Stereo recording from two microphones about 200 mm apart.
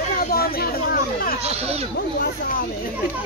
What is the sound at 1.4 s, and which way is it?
Speech, 30° right (ahead or behind).